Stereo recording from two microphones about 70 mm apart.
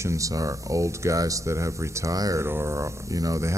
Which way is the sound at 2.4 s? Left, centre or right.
Right.